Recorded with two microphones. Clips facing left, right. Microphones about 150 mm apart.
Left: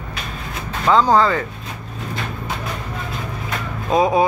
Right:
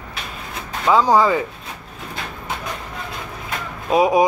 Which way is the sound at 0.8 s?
10° right (ahead or behind).